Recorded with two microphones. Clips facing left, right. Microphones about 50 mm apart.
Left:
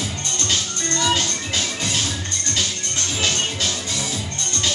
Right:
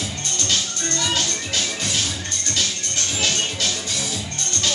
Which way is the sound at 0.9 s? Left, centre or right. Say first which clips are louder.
Left 3 dB; centre.